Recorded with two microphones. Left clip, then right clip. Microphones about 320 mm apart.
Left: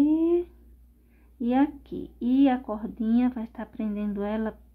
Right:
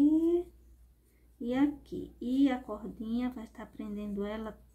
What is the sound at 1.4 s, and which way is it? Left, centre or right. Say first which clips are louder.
Speech: left 6 dB; centre.